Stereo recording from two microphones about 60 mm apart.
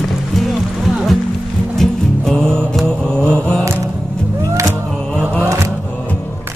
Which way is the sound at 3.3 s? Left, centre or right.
Centre.